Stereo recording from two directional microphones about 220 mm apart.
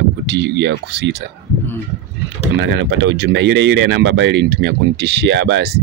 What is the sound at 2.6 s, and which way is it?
Speech, 55° right (ahead or behind).